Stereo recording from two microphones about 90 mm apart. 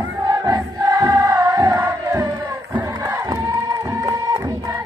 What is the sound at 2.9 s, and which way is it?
Crowd, 45° right (ahead or behind).